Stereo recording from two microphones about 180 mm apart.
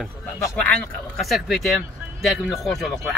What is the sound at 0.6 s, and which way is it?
Speech, 5° left (ahead or behind).